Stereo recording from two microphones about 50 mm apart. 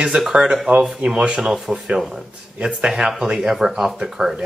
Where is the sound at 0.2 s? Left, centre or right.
Centre.